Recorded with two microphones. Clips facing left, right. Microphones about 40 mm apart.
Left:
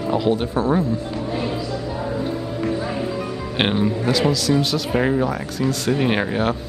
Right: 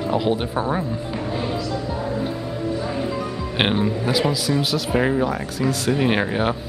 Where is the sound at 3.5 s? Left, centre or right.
Centre.